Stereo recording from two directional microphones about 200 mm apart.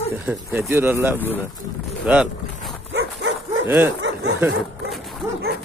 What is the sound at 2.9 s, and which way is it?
Dog, 65° right (ahead or behind).